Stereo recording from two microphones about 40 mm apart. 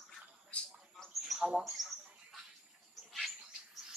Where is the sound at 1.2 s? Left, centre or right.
Centre.